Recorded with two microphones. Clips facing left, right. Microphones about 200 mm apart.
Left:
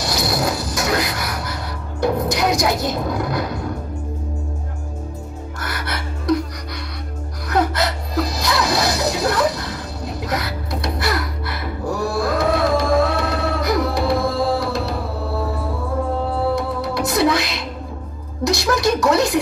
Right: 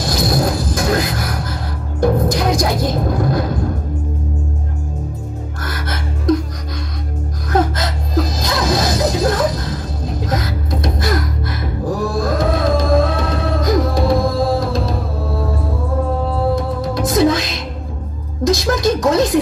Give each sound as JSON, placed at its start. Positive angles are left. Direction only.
{"t": 0.0, "sound": "music", "side_deg": -50}
{"t": 5.6, "sound": "music", "side_deg": -50}
{"t": 7.4, "sound": "gasp", "side_deg": -50}
{"t": 9.1, "sound": "a sound", "side_deg": -50}
{"t": 10.0, "sound": "music", "side_deg": -50}
{"t": 16.5, "sound": "music", "side_deg": -50}
{"t": 18.5, "sound": "a sound", "side_deg": -50}